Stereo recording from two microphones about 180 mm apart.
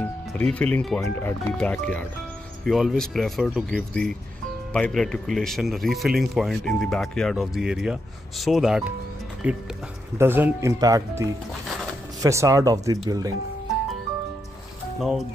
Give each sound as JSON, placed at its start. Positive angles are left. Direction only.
{"t": 0.0, "sound": "speech", "side_deg": 10}
{"t": 15.0, "sound": "speech", "side_deg": 0}